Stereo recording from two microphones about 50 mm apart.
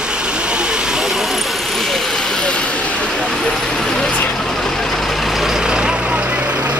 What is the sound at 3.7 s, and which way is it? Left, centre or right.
Vehicle, centre.